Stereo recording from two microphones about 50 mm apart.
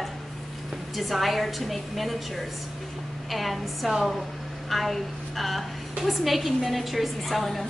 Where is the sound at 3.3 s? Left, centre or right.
Centre.